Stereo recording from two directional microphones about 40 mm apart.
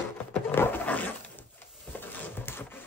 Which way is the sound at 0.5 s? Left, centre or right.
Left.